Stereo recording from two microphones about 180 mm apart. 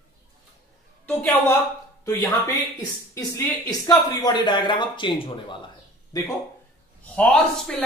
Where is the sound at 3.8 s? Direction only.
20° left (ahead or behind).